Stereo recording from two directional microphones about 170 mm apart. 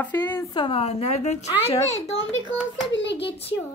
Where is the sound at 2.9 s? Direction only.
90° left.